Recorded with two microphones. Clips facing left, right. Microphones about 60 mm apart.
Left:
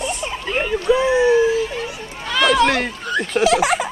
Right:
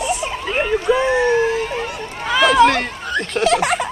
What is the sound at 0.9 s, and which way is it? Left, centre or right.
Speech, right.